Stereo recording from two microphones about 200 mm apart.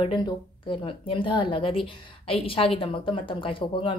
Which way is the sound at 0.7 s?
25° left (ahead or behind).